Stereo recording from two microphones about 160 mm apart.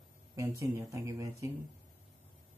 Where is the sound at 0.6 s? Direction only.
20° right (ahead or behind).